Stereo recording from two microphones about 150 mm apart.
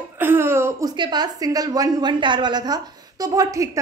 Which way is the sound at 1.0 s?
30° right (ahead or behind).